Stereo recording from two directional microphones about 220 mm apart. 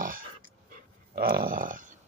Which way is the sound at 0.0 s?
40° right (ahead or behind).